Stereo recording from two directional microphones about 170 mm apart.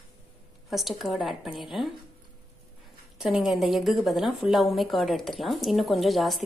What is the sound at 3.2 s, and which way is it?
A woman's voice, centre (ahead or behind).